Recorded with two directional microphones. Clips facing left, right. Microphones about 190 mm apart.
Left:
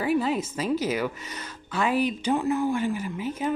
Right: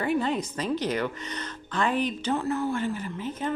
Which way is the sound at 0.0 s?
5° left (ahead or behind).